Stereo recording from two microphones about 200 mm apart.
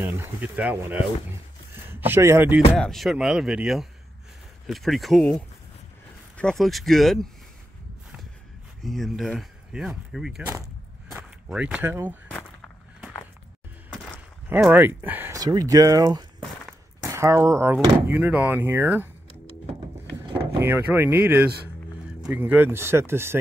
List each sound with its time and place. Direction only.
0.0 s speech: 10° right (ahead or behind)
2.7 s speech: centre (ahead or behind)
8.8 s speech: centre (ahead or behind)
12.3 s walk: 5° left (ahead or behind)
14.5 s speech: 10° right (ahead or behind)
20.6 s speech: 10° right (ahead or behind)